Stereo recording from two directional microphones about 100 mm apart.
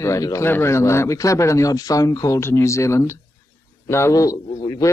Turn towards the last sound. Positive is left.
turn(degrees=35)  # may be behind; listen again after turning